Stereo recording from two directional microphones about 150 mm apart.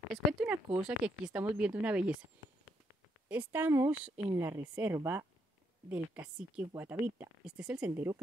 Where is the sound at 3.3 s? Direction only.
10° right (ahead or behind).